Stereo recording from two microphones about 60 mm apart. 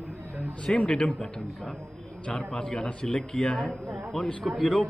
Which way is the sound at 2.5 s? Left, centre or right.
Centre.